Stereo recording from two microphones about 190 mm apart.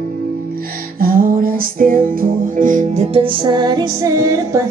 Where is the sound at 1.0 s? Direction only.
50° right (ahead or behind); by 4.6 s 15° right (ahead or behind).